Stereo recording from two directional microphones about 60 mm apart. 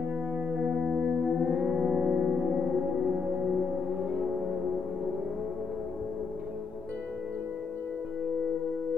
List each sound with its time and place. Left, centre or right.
0.6 s music: centre